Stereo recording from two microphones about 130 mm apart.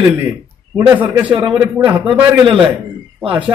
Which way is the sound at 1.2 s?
10° right (ahead or behind).